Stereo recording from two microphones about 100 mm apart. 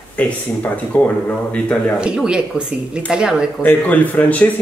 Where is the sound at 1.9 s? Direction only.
10° right (ahead or behind).